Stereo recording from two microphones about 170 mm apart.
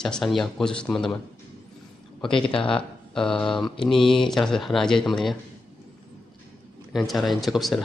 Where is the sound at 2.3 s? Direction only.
30° left (ahead or behind).